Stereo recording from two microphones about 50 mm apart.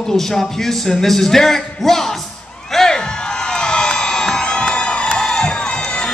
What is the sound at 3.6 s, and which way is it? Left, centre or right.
Crowd, centre.